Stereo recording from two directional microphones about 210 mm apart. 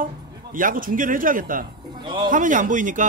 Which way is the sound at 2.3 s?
40° right (ahead or behind).